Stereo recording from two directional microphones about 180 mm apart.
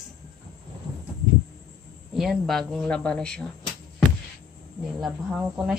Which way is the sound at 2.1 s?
Centre (ahead or behind).